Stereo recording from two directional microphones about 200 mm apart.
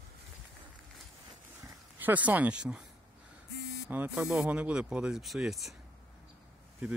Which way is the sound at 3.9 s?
10° right (ahead or behind).